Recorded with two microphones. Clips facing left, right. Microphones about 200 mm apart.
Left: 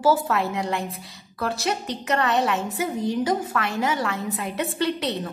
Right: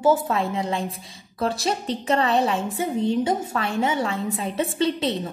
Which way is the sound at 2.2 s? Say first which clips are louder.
Right 1 dB; 25° right (ahead or behind).